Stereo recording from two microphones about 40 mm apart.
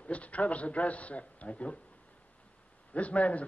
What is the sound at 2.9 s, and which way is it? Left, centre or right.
Speech, left.